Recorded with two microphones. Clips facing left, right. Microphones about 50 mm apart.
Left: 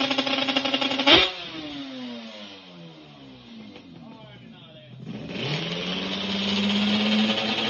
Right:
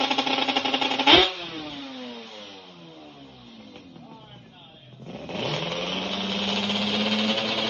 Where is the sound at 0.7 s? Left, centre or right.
Right.